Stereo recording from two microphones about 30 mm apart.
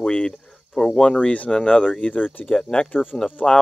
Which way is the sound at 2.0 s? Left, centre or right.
Left.